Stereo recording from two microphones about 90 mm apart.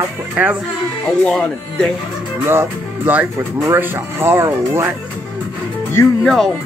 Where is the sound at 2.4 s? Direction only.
25° right (ahead or behind).